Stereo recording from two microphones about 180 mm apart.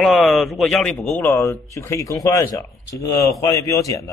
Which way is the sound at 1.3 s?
15° left (ahead or behind).